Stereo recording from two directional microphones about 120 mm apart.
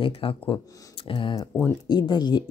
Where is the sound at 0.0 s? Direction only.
50° left (ahead or behind).